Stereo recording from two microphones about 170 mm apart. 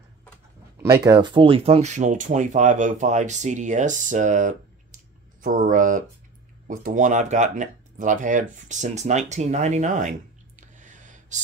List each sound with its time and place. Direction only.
1.0 s speech: 25° right (ahead or behind); by 11.4 s 45° right (ahead or behind)